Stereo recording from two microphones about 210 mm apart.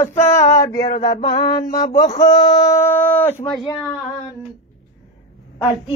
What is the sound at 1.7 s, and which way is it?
Speech, 15° left (ahead or behind).